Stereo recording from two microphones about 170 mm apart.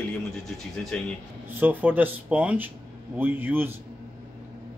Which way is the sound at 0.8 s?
5° left (ahead or behind).